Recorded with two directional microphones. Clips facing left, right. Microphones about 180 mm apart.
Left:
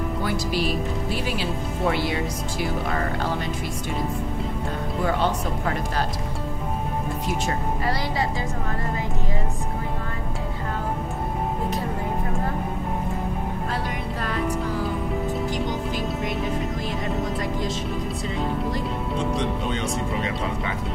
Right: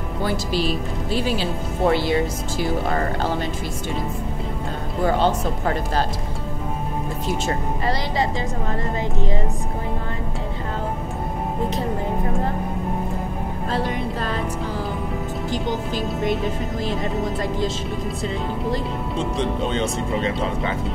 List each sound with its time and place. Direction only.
0.2 s speech: 30° right (ahead or behind)
5.0 s speech: 30° right (ahead or behind)
7.4 s speech: 25° right (ahead or behind)
19.3 s speech: 30° right (ahead or behind)